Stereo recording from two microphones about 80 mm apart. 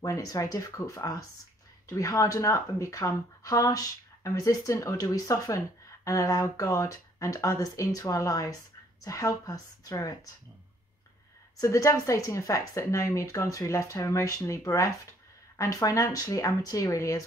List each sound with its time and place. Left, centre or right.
0.0 s speech: left
11.6 s speech: left